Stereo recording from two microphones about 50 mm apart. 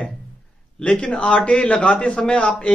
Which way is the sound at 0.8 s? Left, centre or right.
Centre.